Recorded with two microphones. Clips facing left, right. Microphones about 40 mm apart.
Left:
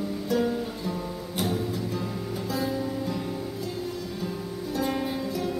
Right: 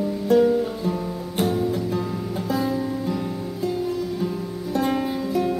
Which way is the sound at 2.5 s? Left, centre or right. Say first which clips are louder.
Right 5 dB; centre.